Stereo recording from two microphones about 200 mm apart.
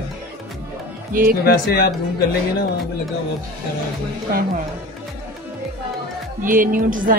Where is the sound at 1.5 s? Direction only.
50° left (ahead or behind).